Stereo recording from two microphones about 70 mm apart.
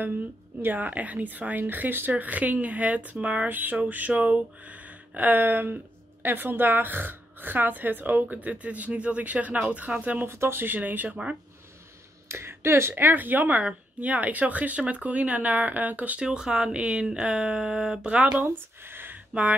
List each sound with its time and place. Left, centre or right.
0.6 s a woman's voice: right
10.2 s a woman's voice: right
12.3 s a woman's voice: right; by 18.3 s centre
18.3 s speech: right